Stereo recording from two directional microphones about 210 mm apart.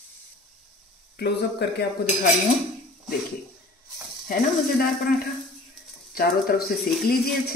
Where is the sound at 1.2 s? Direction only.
50° left (ahead or behind).